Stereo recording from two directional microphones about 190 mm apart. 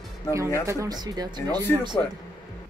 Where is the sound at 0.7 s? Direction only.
20° right (ahead or behind).